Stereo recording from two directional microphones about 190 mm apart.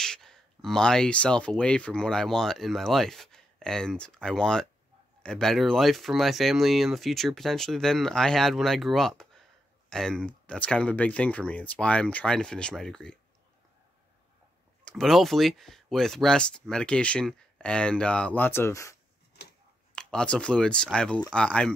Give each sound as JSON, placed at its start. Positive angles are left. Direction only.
{"t": 0.0, "sound": "speech", "side_deg": 5}
{"t": 14.9, "sound": "speech", "side_deg": 0}
{"t": 20.0, "sound": "speech", "side_deg": 5}